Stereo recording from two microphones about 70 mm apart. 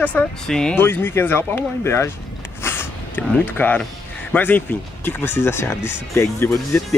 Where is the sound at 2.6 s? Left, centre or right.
Left.